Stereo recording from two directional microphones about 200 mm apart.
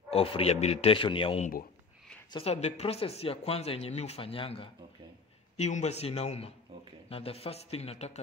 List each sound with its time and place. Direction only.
0.1 s a man's voice: 30° left (ahead or behind)